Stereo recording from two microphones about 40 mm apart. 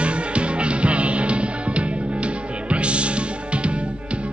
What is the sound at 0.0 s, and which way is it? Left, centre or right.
Music, right.